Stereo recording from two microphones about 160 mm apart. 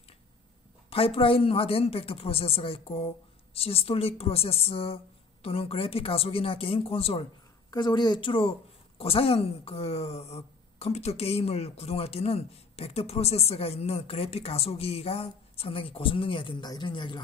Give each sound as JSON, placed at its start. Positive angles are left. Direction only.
{"t": 0.8, "sound": "a woman's voice", "side_deg": 35}